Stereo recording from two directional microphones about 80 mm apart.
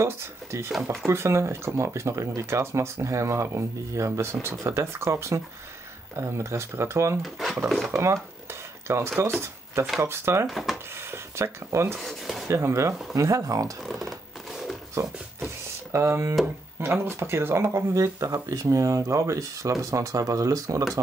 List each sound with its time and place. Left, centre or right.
0.0 s speech: right
7.2 s speech: centre
7.9 s speech: right
10.5 s speech: centre
11.0 s speech: right
12.0 s speech: centre
12.4 s speech: right
13.8 s a sound: centre
15.9 s speech: right